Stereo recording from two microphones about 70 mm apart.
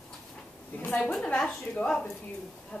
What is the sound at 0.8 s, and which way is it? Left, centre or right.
A woman's voice, centre.